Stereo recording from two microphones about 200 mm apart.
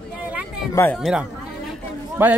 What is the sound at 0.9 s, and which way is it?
A man's voice, centre (ahead or behind).